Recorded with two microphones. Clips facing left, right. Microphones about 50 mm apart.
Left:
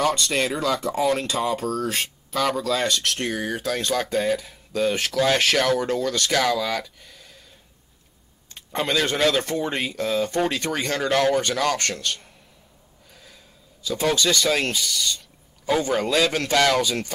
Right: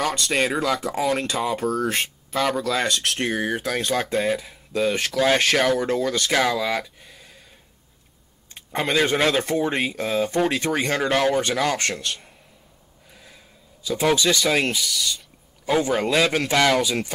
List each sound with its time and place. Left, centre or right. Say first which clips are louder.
0.0 s speech: left 2 dB; centre
0.3 s speech: right 1 dB; centre
0.7 s speech: left 1 dB; centre
2.7 s speech: even; right
8.5 s speech: right 2 dB; centre
13.1 s gasp: right 1 dB; centre
13.8 s speech: right 2 dB; centre